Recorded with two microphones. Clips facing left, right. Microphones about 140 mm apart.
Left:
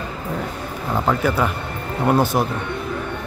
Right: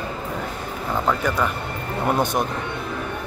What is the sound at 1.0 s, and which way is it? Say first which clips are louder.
Speech: left 3 dB; 10° left (ahead or behind).